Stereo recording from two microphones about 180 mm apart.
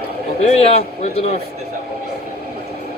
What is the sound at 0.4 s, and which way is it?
Speech, 35° left (ahead or behind).